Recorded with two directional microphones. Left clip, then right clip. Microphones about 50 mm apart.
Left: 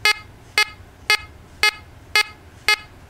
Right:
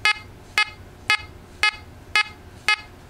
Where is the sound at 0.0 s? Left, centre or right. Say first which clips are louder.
Left 2 dB; left.